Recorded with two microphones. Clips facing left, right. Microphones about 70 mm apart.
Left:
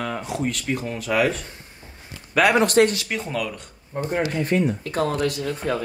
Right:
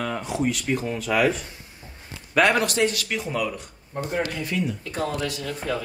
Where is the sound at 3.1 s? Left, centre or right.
Centre.